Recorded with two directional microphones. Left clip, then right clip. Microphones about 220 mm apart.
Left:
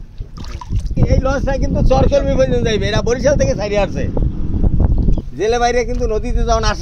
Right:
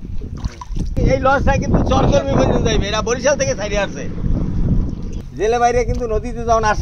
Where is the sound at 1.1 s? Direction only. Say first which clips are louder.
Right 4 dB; 50° left (ahead or behind).